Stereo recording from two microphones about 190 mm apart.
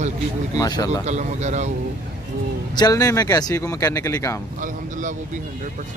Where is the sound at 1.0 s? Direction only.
35° right (ahead or behind).